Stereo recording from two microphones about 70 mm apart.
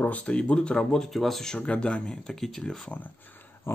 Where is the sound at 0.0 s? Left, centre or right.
Centre.